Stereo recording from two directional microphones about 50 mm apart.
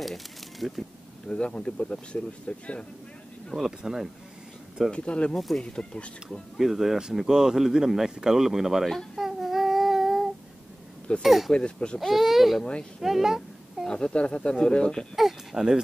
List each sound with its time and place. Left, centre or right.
0.0 s pigeon: centre
1.3 s speech: left
3.5 s speech: centre
4.9 s speech: left
6.5 s speech: centre
8.8 s speech: centre
9.2 s child singing: centre
11.2 s speech: centre
11.5 s speech: left
12.0 s a child's voice: centre
13.8 s speech: centre
15.1 s speech: centre